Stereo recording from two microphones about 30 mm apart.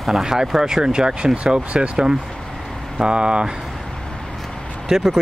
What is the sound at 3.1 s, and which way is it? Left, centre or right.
Speech, right.